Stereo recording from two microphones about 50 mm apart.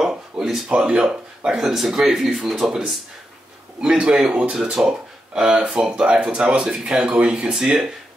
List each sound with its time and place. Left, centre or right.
0.0 s a sound: centre
0.7 s speech: centre
7.1 s speech: right
7.5 s speech: centre